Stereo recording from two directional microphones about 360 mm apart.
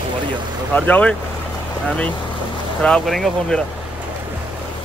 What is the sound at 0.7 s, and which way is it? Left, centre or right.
Speech, centre.